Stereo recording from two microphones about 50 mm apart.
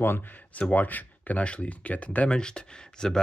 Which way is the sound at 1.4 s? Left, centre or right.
Left.